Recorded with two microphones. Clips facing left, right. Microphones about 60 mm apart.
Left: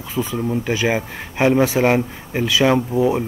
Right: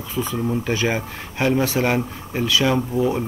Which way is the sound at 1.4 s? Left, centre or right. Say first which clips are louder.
Left 4 dB; centre.